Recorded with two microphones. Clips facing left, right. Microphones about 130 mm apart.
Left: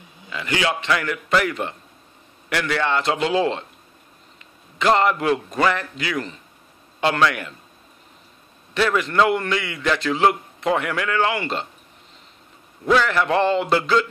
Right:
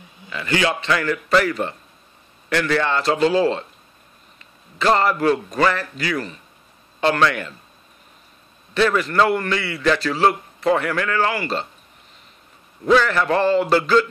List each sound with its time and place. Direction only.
0.3 s a man's voice: 15° left (ahead or behind)
4.7 s a man's voice: 15° left (ahead or behind)
8.7 s a man's voice: 15° left (ahead or behind)
12.9 s a sound: 15° left (ahead or behind)